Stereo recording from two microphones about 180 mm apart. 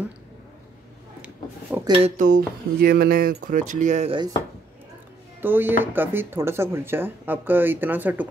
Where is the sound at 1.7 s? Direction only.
10° right (ahead or behind).